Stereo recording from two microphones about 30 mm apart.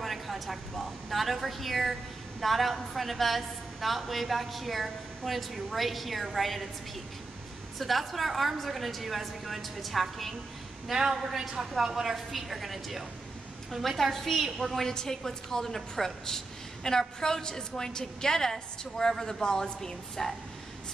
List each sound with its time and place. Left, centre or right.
0.0 s a woman's voice: centre
7.8 s a woman's voice: centre
11.1 s a woman's voice: centre
12.3 s a woman's voice: centre; by 19.9 s left
20.2 s a woman's voice: centre